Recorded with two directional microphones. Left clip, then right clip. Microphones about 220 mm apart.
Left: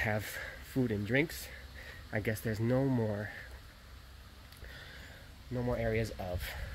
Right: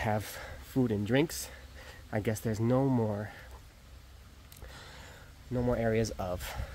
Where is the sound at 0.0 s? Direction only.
15° right (ahead or behind).